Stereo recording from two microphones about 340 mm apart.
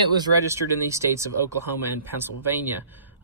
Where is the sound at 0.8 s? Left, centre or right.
Centre.